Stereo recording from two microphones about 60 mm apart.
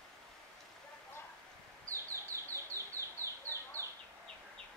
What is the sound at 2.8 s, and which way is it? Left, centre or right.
Chicken, right.